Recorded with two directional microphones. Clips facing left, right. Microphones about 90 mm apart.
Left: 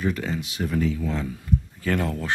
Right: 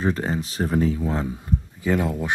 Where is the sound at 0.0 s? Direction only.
35° right (ahead or behind).